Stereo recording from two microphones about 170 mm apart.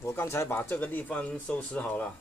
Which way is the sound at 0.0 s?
15° left (ahead or behind).